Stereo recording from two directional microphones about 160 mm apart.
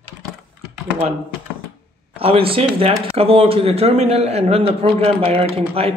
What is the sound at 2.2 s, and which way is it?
A man's voice, 35° right (ahead or behind).